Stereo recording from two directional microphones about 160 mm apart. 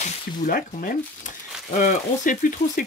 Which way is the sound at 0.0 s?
55° left (ahead or behind).